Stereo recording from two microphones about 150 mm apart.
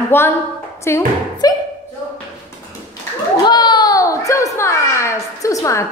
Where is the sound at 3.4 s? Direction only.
30° left (ahead or behind).